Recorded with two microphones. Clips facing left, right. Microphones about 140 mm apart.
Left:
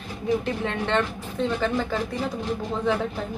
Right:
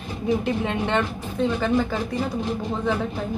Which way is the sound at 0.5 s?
10° right (ahead or behind).